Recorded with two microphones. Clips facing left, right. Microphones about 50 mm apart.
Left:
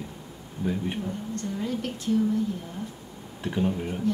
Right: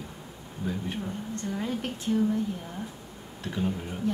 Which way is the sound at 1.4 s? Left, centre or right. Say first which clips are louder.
Even; centre.